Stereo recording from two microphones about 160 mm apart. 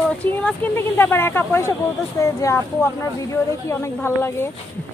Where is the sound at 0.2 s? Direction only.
10° left (ahead or behind).